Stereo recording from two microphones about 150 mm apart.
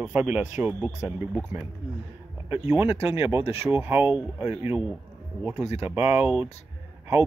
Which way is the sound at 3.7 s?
15° right (ahead or behind).